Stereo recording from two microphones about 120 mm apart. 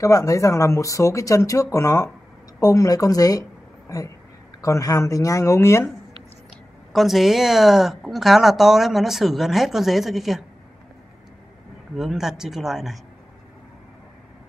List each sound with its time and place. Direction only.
0.0 s speech: 25° left (ahead or behind)
4.6 s speech: 30° left (ahead or behind)
6.9 s a woman's voice: centre (ahead or behind)
11.9 s a woman's voice: centre (ahead or behind)